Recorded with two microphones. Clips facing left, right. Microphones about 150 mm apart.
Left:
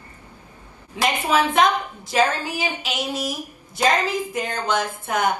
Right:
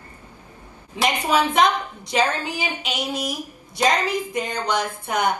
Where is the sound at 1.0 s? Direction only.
10° right (ahead or behind).